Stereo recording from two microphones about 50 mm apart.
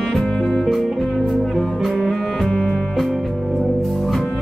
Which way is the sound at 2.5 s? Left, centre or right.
Centre.